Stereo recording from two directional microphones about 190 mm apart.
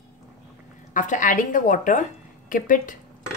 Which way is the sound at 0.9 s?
45° left (ahead or behind).